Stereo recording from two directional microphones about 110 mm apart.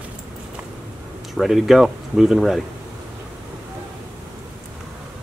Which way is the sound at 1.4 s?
Centre (ahead or behind).